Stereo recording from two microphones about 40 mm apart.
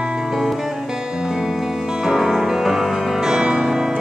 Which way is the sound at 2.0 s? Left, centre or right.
Centre.